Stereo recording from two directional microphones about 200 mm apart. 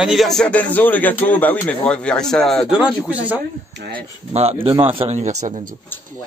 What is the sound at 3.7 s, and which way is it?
Speech, 55° right (ahead or behind).